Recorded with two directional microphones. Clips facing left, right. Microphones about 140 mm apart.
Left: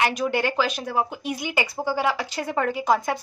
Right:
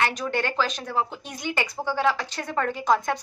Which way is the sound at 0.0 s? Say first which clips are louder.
Left 3 dB; 10° left (ahead or behind).